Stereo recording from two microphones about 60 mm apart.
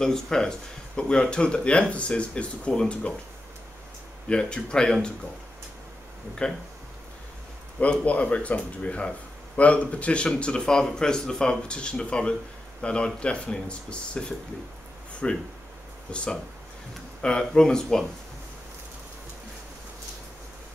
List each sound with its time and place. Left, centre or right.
0.0 s speech: centre
4.3 s speech: centre
8.0 s speech: left
15.2 s speech: centre